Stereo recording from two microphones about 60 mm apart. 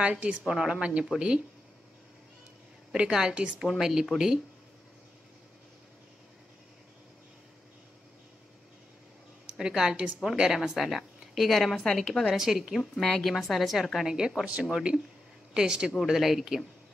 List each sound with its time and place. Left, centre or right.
0.0 s a woman's voice: centre
2.9 s speech: centre
9.5 s a woman's voice: centre
12.3 s a woman's voice: centre
16.0 s a woman's voice: centre